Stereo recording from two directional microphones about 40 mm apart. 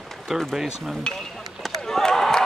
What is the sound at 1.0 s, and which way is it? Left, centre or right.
Speech, centre.